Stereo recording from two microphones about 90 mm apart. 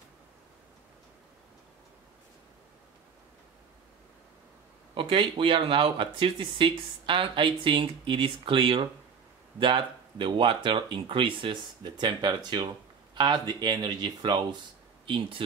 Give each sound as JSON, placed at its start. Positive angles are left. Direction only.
{"t": 4.9, "sound": "speech", "side_deg": -65}
{"t": 15.0, "sound": "speech", "side_deg": -70}